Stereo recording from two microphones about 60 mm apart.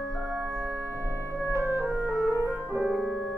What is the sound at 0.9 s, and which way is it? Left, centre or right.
Music, left.